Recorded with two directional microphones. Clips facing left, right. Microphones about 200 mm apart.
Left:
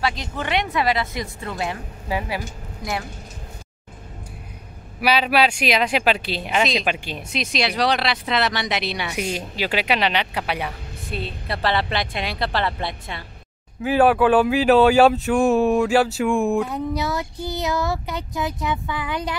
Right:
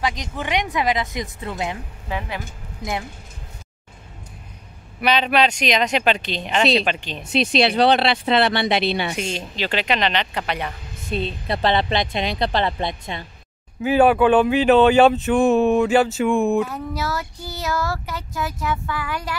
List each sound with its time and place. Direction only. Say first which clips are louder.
0.0 s speech: even; 15° right (ahead or behind)
2.0 s speech: left 3 dB; 10° left (ahead or behind)
2.8 s speech: right 1 dB; 20° right (ahead or behind)
5.0 s speech: even; 5° left (ahead or behind)
7.3 s speech: right 6 dB; 30° right (ahead or behind)
9.1 s speech: left 1 dB; 10° left (ahead or behind)
11.1 s speech: right 5 dB; 20° right (ahead or behind)
13.8 s speech: right 1 dB; centre (ahead or behind)
16.6 s speech: left 2 dB; 20° left (ahead or behind)